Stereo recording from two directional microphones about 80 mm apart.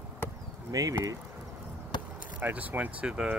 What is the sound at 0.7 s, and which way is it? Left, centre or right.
Speech, right.